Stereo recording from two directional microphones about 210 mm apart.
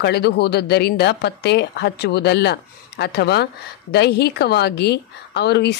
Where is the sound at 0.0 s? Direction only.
50° left (ahead or behind).